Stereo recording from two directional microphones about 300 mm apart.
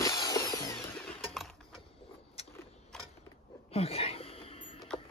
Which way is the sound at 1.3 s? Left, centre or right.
Centre.